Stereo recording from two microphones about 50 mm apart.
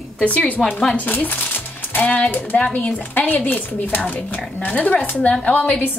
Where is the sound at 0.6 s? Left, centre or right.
Centre.